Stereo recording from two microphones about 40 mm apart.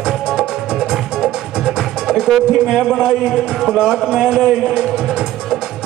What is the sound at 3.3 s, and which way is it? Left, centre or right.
A man's voice, centre.